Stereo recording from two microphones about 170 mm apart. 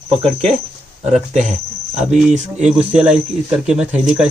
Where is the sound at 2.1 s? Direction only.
45° right (ahead or behind).